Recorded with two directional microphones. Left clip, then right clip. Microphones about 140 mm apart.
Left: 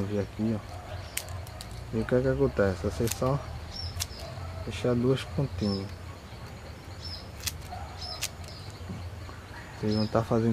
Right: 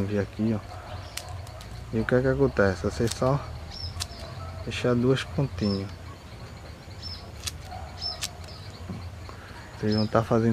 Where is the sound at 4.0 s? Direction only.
10° right (ahead or behind).